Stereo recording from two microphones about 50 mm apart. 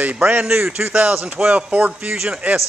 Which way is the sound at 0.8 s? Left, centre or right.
Right.